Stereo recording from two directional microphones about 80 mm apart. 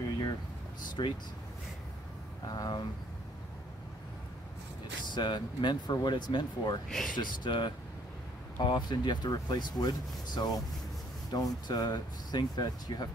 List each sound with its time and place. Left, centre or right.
1.0 s speech: left
2.4 s speech: left
5.1 s speech: left
6.9 s speech: centre
7.2 s speech: left